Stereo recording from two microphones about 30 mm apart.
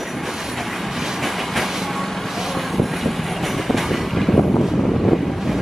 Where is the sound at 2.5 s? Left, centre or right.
Centre.